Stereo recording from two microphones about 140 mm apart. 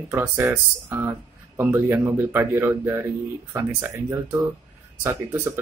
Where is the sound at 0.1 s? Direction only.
15° right (ahead or behind).